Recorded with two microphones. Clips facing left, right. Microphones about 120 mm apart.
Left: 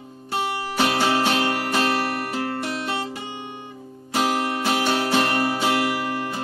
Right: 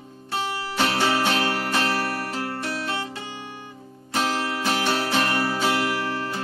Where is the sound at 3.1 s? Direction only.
20° left (ahead or behind).